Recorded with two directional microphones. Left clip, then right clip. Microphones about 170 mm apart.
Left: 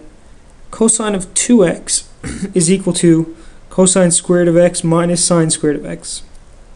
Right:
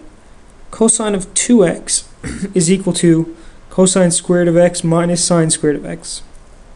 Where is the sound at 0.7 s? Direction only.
5° right (ahead or behind).